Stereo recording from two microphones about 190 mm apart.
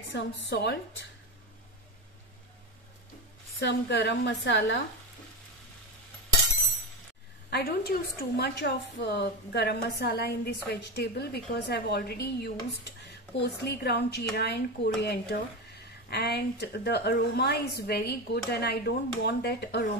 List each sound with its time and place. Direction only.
0.1 s a woman's voice: 70° left (ahead or behind)
3.5 s a woman's voice: 65° left (ahead or behind)
7.4 s a woman's voice: 55° left (ahead or behind)